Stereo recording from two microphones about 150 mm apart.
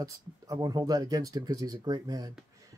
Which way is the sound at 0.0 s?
25° right (ahead or behind).